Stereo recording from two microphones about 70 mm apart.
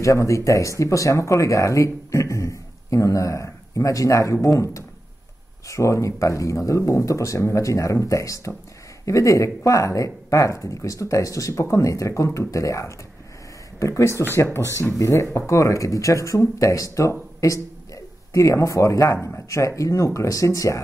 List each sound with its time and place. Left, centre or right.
0.0 s speech: left
14.6 s speech: right
14.9 s speech: left